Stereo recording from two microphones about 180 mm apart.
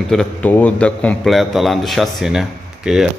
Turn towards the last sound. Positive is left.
turn(degrees=-5)  # may be behind; listen again after turning